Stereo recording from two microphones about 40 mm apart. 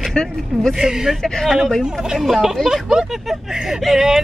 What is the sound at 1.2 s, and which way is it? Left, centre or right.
Speech, centre.